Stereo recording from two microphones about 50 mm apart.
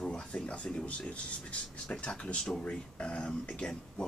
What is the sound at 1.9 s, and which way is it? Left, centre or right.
Speech, centre.